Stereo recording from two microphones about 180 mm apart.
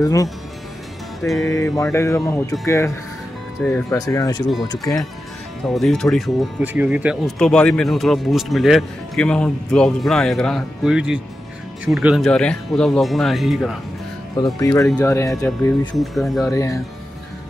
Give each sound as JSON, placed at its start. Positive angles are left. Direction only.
{"t": 0.0, "sound": "speech", "side_deg": 20}
{"t": 1.4, "sound": "music", "side_deg": 20}
{"t": 3.7, "sound": "speech", "side_deg": 20}
{"t": 5.7, "sound": "speech", "side_deg": 0}
{"t": 6.6, "sound": "speech", "side_deg": -10}
{"t": 7.3, "sound": "speech", "side_deg": 5}
{"t": 14.3, "sound": "speech", "side_deg": 20}
{"t": 15.0, "sound": "music", "side_deg": 15}
{"t": 16.0, "sound": "speech", "side_deg": 0}